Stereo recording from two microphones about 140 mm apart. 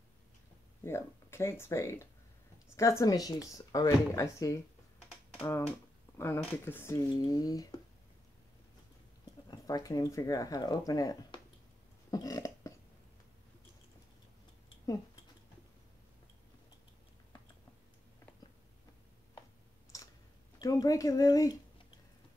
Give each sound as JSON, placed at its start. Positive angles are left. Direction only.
{"t": 0.8, "sound": "speech", "side_deg": 20}
{"t": 6.1, "sound": "speech", "side_deg": 15}
{"t": 9.5, "sound": "speech", "side_deg": 25}
{"t": 12.1, "sound": "a sound", "side_deg": 25}
{"t": 19.9, "sound": "clicking", "side_deg": 20}
{"t": 20.5, "sound": "speech", "side_deg": 30}